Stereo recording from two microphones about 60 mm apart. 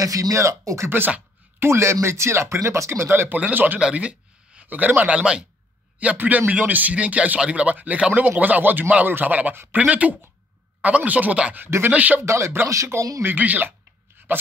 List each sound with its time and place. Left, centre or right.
0.0 s speech: right
0.8 s speech: right
1.6 s speech: right
3.8 s speech: right
12.2 s speech: right
13.2 s speech: right